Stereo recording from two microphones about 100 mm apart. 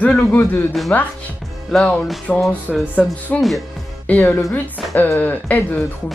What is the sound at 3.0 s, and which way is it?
A woman's voice, 15° left (ahead or behind).